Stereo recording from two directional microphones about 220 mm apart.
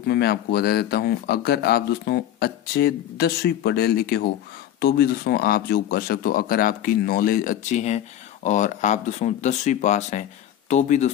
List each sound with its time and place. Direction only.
0.0 s speech: 45° left (ahead or behind)